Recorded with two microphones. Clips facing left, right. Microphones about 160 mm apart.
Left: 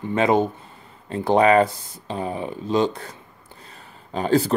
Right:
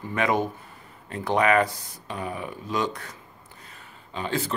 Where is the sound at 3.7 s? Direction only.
40° left (ahead or behind).